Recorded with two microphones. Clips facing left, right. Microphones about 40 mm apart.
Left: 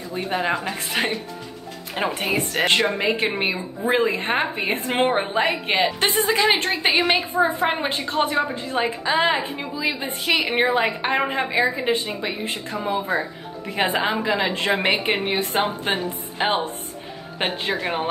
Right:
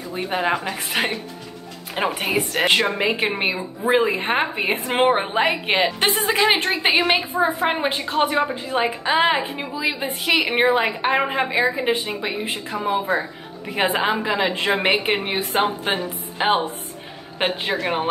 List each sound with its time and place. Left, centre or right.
0.1 s a woman's voice: centre